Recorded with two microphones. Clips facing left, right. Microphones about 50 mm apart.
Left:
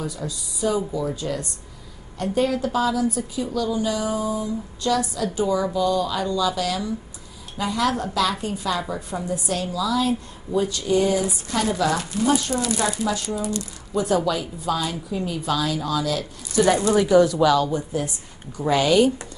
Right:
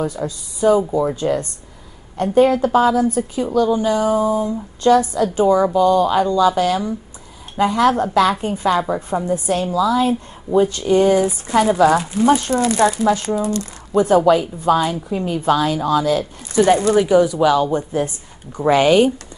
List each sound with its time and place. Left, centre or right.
0.0 s a woman's voice: right; by 17.6 s centre
17.6 s a woman's voice: right